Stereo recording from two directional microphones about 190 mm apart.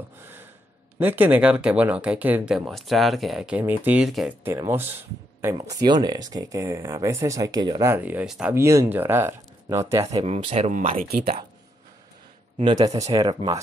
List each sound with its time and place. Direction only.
0.9 s speech: 10° right (ahead or behind)
10.2 s speech: 35° right (ahead or behind)
11.0 s speech: 55° right (ahead or behind)
12.5 s speech: 25° right (ahead or behind)